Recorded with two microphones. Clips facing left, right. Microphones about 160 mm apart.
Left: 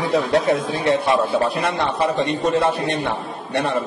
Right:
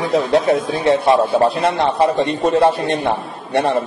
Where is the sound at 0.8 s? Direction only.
30° right (ahead or behind).